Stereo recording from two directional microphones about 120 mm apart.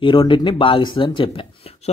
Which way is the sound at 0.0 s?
40° left (ahead or behind).